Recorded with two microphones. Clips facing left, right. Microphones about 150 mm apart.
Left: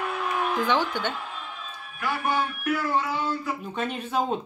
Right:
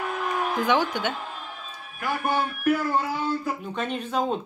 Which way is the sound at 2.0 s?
45° right (ahead or behind).